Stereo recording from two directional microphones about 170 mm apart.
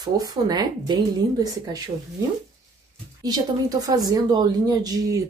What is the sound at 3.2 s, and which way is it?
A woman's voice, 20° right (ahead or behind).